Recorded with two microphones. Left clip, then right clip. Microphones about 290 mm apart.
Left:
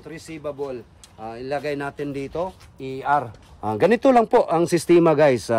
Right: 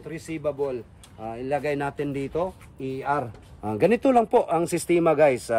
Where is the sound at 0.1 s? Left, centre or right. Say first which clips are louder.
Right 3 dB; centre.